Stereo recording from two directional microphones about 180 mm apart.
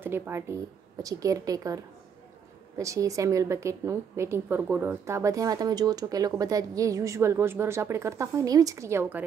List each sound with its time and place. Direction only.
0.0 s a woman's voice: 15° right (ahead or behind)
2.8 s a woman's voice: 15° right (ahead or behind)